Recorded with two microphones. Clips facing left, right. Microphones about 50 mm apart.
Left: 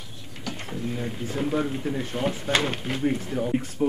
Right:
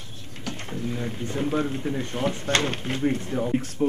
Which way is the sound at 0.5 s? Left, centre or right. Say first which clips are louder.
Even; centre.